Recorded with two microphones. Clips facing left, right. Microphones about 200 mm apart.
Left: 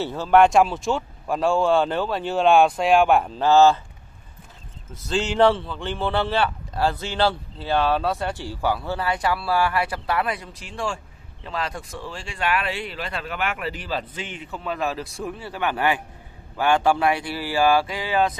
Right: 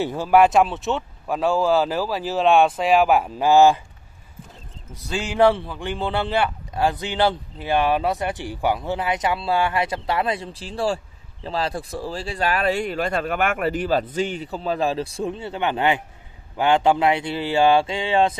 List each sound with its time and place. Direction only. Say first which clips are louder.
0.0 s speech: even; 15° right (ahead or behind)
5.0 s speech: even; 10° right (ahead or behind); by 18.3 s 25° right (ahead or behind)